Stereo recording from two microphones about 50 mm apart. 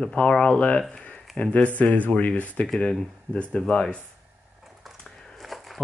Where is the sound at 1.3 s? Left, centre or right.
Centre.